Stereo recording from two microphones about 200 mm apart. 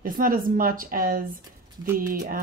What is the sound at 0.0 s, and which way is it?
Speech, 45° right (ahead or behind).